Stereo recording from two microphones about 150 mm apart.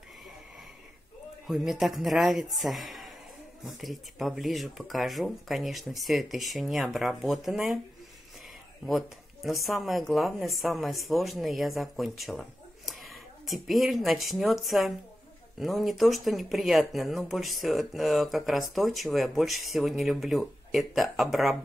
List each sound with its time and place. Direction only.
1.5 s speech: centre (ahead or behind)
8.8 s speech: centre (ahead or behind)